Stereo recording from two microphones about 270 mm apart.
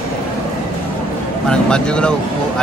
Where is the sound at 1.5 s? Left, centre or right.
Centre.